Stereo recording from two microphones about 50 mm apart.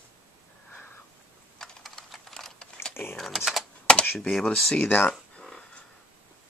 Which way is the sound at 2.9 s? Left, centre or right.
Left.